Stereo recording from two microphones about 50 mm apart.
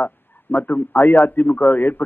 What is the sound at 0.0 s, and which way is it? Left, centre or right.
A man's voice, left.